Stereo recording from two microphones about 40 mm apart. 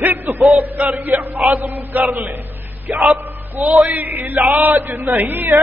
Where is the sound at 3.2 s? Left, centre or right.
Right.